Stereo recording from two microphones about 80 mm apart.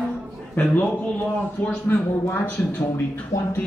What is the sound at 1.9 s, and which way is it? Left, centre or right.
Speech, left.